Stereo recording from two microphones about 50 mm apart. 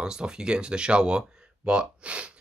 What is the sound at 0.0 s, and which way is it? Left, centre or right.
Speech, centre.